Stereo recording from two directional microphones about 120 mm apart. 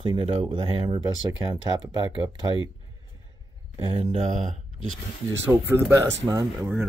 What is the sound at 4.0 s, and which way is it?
Speech, 55° right (ahead or behind).